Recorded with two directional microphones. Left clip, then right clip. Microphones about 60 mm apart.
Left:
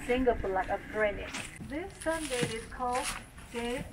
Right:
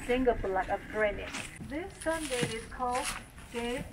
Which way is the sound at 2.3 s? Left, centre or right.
Left.